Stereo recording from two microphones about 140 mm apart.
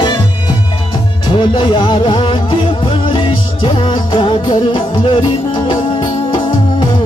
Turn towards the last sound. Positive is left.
turn(degrees=35)  # may be behind; listen again after turning